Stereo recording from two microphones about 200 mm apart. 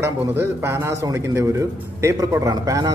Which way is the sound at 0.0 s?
10° right (ahead or behind).